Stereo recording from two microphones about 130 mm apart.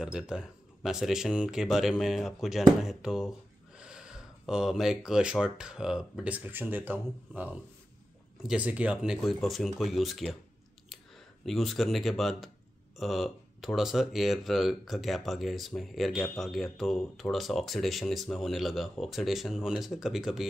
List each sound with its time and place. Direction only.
0.0 s speech: 5° right (ahead or behind)